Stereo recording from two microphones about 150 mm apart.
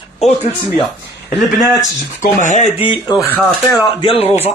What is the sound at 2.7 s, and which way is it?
A man's voice, 35° left (ahead or behind).